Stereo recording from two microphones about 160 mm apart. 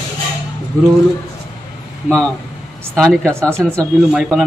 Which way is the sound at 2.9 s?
5° left (ahead or behind).